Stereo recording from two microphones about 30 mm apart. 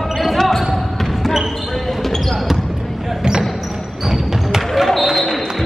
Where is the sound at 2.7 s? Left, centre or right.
Centre.